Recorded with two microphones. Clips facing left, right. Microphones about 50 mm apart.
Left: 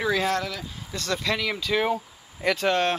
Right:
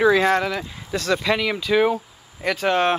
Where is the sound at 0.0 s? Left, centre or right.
Right.